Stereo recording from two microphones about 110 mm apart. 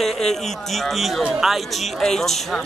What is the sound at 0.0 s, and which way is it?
A man's voice, 5° left (ahead or behind).